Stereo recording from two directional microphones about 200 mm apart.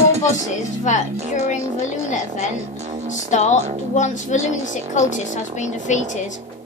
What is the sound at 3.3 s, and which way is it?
A woman's voice, 35° left (ahead or behind).